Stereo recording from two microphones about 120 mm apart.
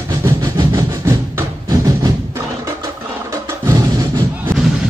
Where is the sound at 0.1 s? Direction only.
25° right (ahead or behind).